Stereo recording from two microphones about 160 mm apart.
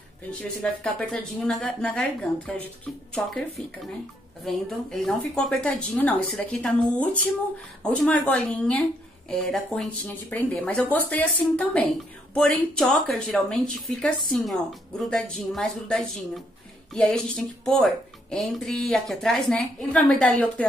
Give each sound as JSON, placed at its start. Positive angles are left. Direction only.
{"t": 0.3, "sound": "a woman's voice", "side_deg": 10}